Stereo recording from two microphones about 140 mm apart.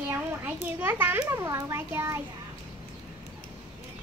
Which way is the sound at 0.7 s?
15° right (ahead or behind).